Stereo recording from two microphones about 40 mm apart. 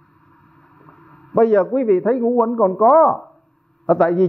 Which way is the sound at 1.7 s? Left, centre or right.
Centre.